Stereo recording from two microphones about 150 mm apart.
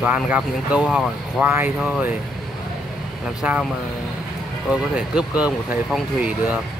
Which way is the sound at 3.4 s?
10° right (ahead or behind).